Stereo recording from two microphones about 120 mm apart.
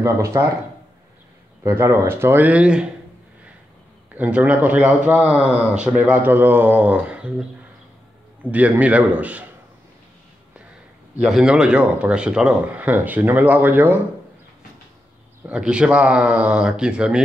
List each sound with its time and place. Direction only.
0.0 s speech: 20° right (ahead or behind)
1.6 s speech: 20° right (ahead or behind)
4.1 s a man's voice: 15° right (ahead or behind)
11.1 s a man's voice: 5° right (ahead or behind)
15.4 s a man's voice: 10° right (ahead or behind)